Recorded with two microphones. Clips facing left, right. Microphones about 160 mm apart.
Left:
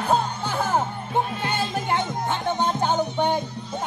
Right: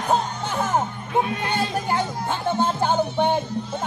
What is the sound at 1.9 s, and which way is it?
Music, 20° left (ahead or behind).